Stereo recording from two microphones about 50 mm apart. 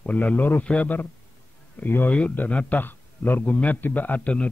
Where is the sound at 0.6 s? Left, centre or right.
Left.